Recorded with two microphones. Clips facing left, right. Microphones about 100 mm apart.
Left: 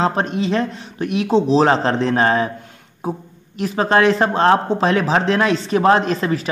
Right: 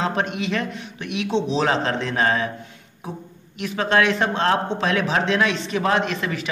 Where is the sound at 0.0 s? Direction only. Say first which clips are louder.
Left 5 dB; 35° left (ahead or behind).